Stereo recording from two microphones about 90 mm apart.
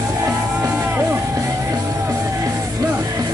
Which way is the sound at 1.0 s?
35° right (ahead or behind).